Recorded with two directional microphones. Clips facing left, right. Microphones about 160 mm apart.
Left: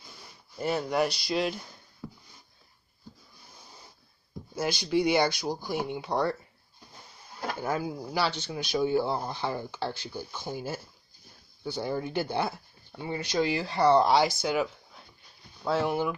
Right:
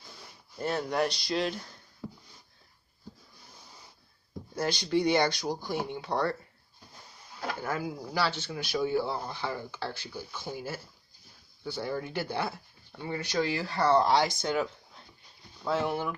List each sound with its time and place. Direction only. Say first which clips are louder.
0.6 s speech: left 2 dB; 5° left (ahead or behind)
4.6 s speech: left 1 dB; 10° left (ahead or behind)
7.6 s speech: left 4 dB; 20° left (ahead or behind)